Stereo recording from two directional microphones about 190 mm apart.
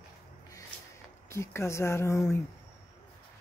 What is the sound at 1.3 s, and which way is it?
A man's voice, 15° left (ahead or behind).